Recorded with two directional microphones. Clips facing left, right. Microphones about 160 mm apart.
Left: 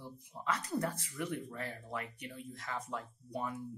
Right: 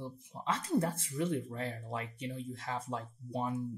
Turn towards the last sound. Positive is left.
turn(degrees=-25)  # may be behind; listen again after turning